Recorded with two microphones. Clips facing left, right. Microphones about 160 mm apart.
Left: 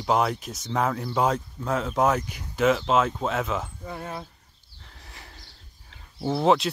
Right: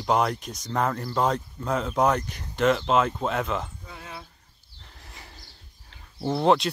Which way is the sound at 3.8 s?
45° left (ahead or behind).